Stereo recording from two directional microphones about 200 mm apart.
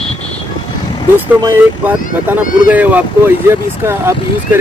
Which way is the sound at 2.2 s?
10° right (ahead or behind).